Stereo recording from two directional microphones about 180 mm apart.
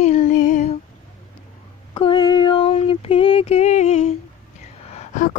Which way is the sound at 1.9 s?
25° left (ahead or behind).